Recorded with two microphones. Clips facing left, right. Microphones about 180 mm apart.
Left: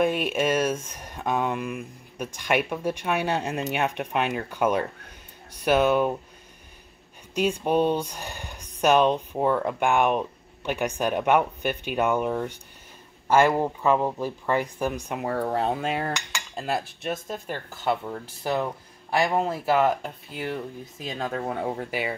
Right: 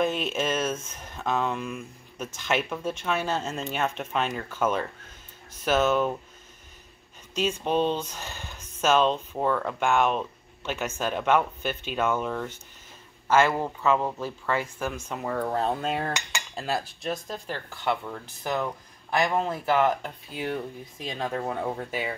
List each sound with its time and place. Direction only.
0.0 s speech: 10° left (ahead or behind)
7.3 s speech: 10° left (ahead or behind)
18.0 s speech: 20° left (ahead or behind)